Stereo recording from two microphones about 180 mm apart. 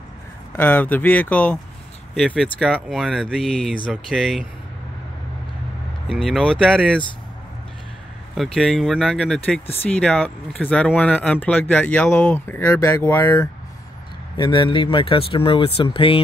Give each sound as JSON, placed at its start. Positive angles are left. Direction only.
{"t": 0.6, "sound": "speech", "side_deg": 10}
{"t": 6.0, "sound": "speech", "side_deg": 0}
{"t": 8.4, "sound": "speech", "side_deg": 0}
{"t": 14.3, "sound": "speech", "side_deg": 25}